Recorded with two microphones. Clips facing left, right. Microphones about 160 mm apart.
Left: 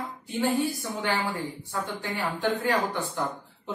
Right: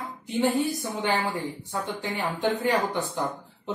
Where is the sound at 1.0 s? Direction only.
20° right (ahead or behind).